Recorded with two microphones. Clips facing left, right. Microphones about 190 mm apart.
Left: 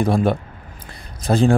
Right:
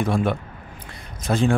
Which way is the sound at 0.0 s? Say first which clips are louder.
Left 4 dB; 35° left (ahead or behind).